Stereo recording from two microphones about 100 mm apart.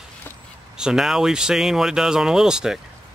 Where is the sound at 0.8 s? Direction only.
5° right (ahead or behind).